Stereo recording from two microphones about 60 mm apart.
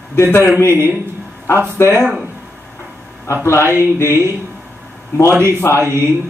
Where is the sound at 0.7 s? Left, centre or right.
Right.